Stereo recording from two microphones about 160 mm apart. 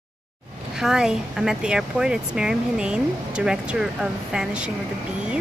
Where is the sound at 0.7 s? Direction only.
5° right (ahead or behind).